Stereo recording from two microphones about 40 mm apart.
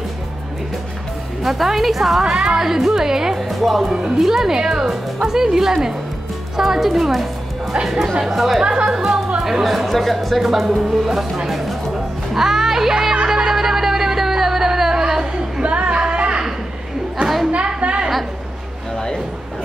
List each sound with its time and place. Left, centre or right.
1.4 s speech: centre
2.3 s a woman's voice: right
2.6 s speech: centre
3.3 s speech: centre
3.9 s a woman's voice: centre
4.2 s a woman's voice: centre
8.6 s a woman's voice: right
8.9 s speech: centre
12.4 s music: centre
15.6 s singing: right
16.1 s a sound: right
17.7 s a sound: right